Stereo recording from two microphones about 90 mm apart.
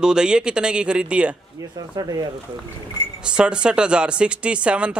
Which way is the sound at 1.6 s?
40° right (ahead or behind).